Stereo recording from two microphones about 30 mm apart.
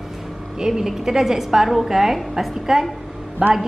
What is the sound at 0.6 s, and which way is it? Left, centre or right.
A woman's voice, centre.